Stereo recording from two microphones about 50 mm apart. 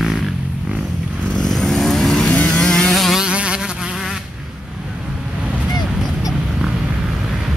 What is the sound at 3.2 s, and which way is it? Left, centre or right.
Insect, right.